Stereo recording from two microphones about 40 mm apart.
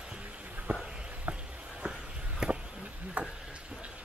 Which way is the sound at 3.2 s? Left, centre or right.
Right.